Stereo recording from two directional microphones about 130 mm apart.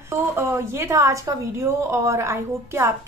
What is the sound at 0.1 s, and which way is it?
A woman's voice, 20° right (ahead or behind).